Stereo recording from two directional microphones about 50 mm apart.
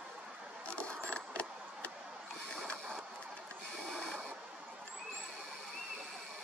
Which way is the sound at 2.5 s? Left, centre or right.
Centre.